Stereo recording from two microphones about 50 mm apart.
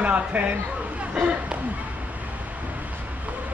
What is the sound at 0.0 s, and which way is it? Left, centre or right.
Speech, right.